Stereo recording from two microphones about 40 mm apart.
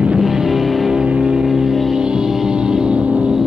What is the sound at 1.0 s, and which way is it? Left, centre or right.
Music, right.